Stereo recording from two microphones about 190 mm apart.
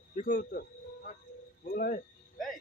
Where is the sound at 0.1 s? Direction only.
45° left (ahead or behind).